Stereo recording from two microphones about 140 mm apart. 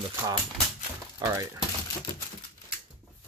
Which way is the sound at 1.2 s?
25° right (ahead or behind).